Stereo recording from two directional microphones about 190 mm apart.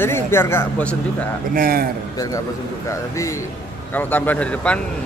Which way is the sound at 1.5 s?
50° right (ahead or behind).